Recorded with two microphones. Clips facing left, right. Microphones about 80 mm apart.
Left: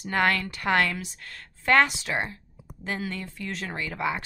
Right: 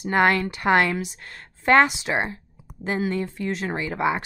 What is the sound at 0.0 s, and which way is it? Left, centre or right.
A woman's voice, centre.